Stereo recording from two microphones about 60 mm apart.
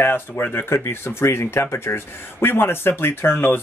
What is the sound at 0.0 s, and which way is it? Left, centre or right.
Speech, left.